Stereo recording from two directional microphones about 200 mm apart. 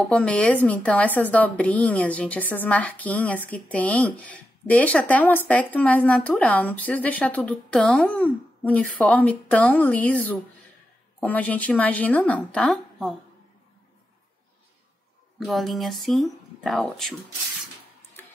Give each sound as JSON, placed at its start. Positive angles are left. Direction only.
{"t": 0.1, "sound": "a woman's voice", "side_deg": 5}
{"t": 15.3, "sound": "speech", "side_deg": 0}